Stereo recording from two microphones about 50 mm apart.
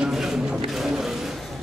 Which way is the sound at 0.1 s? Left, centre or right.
Centre.